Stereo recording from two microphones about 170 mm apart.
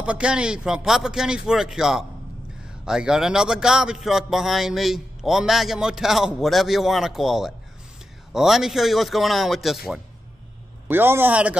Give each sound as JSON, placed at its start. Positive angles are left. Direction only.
{"t": 0.0, "sound": "a man's voice", "side_deg": -5}
{"t": 10.9, "sound": "a man's voice", "side_deg": -10}